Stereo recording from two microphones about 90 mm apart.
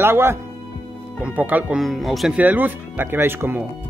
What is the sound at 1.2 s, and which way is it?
Speech, 15° right (ahead or behind).